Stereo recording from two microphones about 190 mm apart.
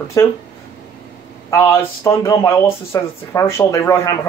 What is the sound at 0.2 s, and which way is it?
Speech, 15° left (ahead or behind).